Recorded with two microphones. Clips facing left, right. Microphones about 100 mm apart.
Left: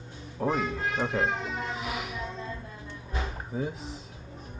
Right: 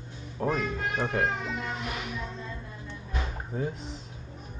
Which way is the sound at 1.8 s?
5° left (ahead or behind).